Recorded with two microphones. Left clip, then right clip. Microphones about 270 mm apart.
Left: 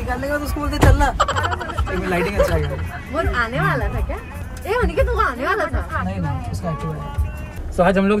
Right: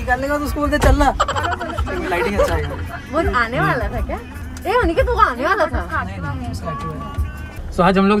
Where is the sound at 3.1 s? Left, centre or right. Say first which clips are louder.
Right 3 dB; right.